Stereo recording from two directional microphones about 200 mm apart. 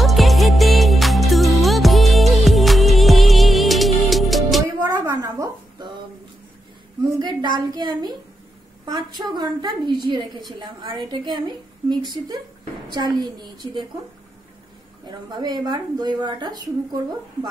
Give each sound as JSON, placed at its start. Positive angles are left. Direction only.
{"t": 0.0, "sound": "music", "side_deg": 0}
{"t": 4.6, "sound": "a sound", "side_deg": -20}
{"t": 7.2, "sound": "speech", "side_deg": -20}
{"t": 15.0, "sound": "speech", "side_deg": -20}